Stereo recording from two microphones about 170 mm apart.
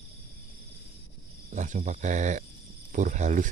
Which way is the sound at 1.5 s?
45° right (ahead or behind).